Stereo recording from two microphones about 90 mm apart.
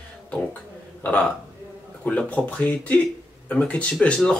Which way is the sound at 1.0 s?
15° left (ahead or behind).